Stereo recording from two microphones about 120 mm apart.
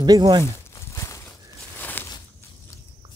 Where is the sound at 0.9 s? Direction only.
25° left (ahead or behind).